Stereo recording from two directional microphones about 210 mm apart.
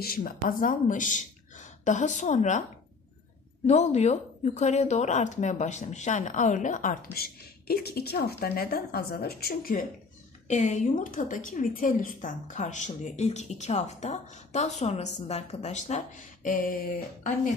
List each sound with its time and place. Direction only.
0.0 s speech: 45° left (ahead or behind)
3.6 s a woman's voice: 30° left (ahead or behind)